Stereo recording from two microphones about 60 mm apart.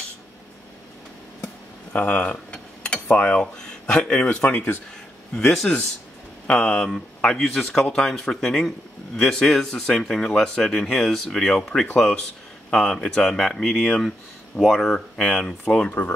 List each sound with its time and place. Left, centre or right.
1.4 s a sound: left
2.5 s speech: centre
5.3 s a man's voice: centre
6.8 s a man's voice: centre